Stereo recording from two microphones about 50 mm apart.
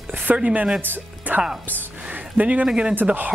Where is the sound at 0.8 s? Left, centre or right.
Right.